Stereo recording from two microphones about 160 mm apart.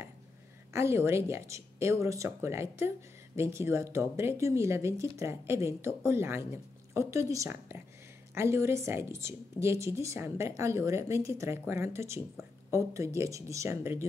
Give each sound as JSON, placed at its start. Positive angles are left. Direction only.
{"t": 0.7, "sound": "speech", "side_deg": -15}